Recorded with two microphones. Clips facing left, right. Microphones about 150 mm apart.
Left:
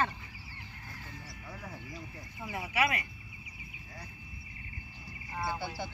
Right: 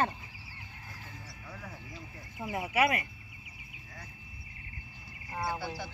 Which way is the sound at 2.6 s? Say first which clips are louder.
Right 3 dB; 50° right (ahead or behind).